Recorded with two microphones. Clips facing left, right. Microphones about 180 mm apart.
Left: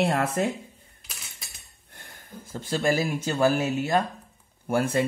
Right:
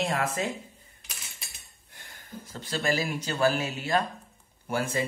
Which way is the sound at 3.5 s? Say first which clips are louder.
Left 6 dB; 50° left (ahead or behind).